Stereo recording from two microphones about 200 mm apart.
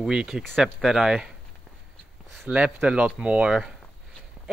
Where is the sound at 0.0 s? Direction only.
5° right (ahead or behind).